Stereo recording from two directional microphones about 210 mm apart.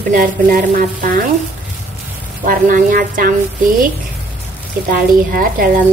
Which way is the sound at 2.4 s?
40° right (ahead or behind).